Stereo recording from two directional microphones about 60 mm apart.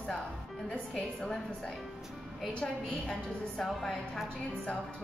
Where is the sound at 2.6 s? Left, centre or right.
Centre.